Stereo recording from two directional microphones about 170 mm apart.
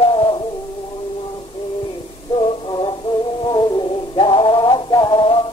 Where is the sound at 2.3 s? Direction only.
30° left (ahead or behind).